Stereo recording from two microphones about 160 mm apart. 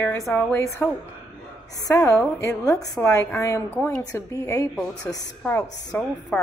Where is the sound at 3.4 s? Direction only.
20° left (ahead or behind).